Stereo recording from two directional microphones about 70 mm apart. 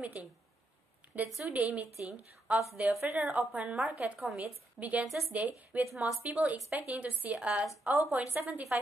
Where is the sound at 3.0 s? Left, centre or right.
Right.